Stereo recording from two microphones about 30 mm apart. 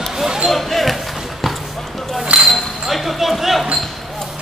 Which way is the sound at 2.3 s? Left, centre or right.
Right.